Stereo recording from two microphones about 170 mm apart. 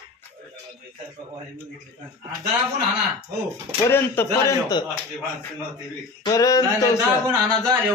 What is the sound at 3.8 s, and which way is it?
A man's voice, 15° left (ahead or behind).